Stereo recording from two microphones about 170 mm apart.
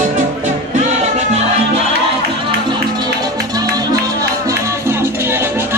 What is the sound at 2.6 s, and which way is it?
Music, 25° right (ahead or behind).